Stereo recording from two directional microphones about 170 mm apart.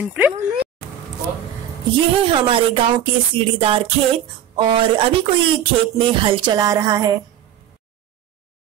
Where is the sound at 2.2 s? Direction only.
30° right (ahead or behind).